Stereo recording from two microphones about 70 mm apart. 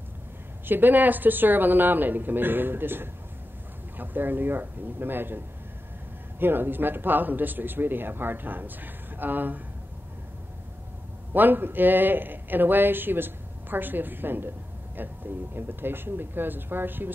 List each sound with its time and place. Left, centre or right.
0.7 s speech: right
6.4 s speech: right
11.3 s a woman's voice: right